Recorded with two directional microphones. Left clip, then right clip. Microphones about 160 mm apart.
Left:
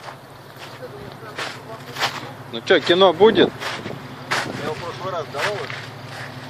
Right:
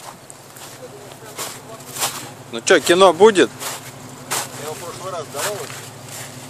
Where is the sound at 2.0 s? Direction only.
10° right (ahead or behind).